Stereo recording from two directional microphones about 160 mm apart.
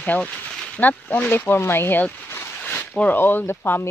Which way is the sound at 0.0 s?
10° left (ahead or behind).